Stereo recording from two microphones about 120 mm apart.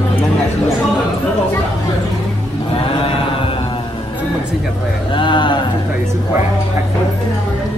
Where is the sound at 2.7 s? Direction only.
50° left (ahead or behind).